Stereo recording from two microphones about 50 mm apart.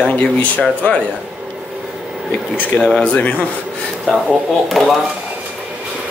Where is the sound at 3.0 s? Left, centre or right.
Left.